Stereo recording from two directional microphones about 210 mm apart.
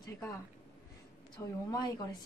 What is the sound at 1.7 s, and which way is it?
Speech, 20° left (ahead or behind).